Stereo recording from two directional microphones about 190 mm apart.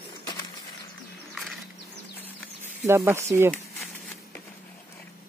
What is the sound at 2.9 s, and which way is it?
Speech, 15° right (ahead or behind).